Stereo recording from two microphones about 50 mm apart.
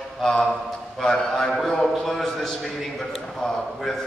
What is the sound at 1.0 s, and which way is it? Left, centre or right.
A man's voice, centre.